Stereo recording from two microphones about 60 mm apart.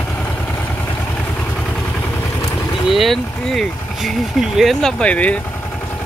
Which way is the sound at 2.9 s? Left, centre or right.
Centre.